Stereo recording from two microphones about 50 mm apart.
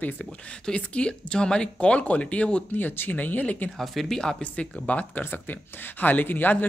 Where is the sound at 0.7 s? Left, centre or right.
Left.